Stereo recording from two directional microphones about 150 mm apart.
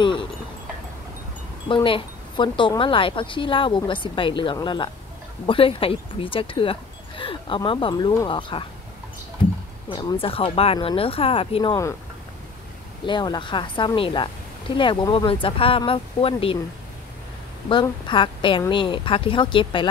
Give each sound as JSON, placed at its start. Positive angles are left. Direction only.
{"t": 0.0, "sound": "speech", "side_deg": 35}
{"t": 1.7, "sound": "a woman's voice", "side_deg": 35}
{"t": 9.9, "sound": "a woman's voice", "side_deg": 35}
{"t": 13.0, "sound": "a woman's voice", "side_deg": 30}
{"t": 17.6, "sound": "a woman's voice", "side_deg": 35}